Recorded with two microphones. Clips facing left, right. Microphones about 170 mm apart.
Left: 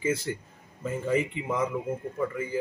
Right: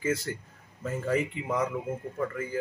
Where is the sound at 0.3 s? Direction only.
15° left (ahead or behind).